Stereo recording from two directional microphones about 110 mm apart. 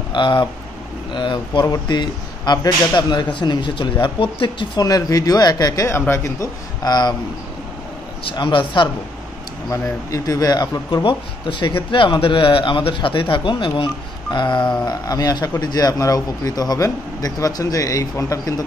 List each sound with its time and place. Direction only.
0.1 s a man's voice: 45° left (ahead or behind)
4.8 s a man's voice: 35° left (ahead or behind)
6.8 s a man's voice: 40° left (ahead or behind)
8.3 s a man's voice: 50° left (ahead or behind)
9.7 s a man's voice: 30° left (ahead or behind)
14.9 s a man's voice: 35° left (ahead or behind)